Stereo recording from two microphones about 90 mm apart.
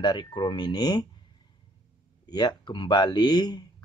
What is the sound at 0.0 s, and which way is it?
Speech, 55° left (ahead or behind).